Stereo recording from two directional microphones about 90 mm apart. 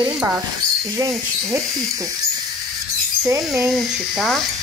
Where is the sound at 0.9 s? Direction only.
35° right (ahead or behind).